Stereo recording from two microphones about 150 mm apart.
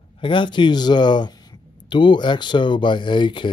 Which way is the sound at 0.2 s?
35° left (ahead or behind).